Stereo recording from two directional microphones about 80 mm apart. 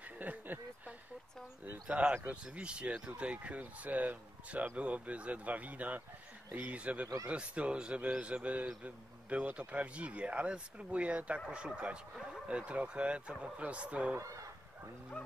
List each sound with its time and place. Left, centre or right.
0.2 s a sound: right
1.6 s speech: centre
14.1 s fowl: right
15.2 s bow-wow: centre